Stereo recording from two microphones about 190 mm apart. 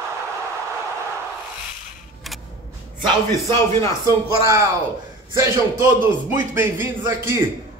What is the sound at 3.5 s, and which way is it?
Speech, 15° left (ahead or behind).